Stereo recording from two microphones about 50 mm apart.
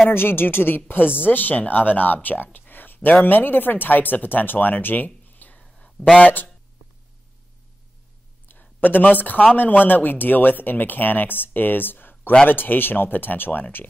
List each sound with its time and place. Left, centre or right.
0.1 s speech: left
6.0 s speech: centre
8.5 s a sound: left
9.6 s speech: left